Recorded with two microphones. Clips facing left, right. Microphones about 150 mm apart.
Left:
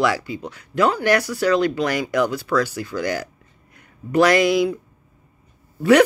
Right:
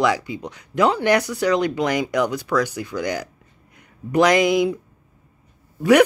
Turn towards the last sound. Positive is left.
turn(degrees=-10)  # may be behind; listen again after turning